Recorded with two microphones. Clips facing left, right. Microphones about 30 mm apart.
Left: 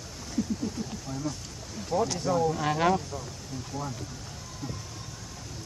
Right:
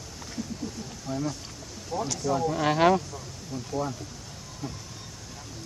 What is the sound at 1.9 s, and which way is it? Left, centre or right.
Speech, left.